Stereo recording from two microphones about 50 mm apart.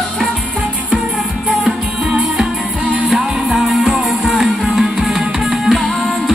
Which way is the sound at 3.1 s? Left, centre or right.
Centre.